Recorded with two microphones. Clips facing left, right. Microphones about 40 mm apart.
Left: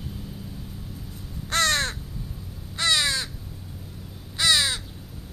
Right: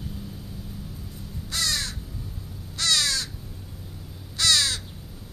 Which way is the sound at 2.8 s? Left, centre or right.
Left.